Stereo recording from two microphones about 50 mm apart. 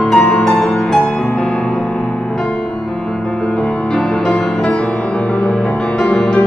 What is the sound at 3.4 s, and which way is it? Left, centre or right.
Music, centre.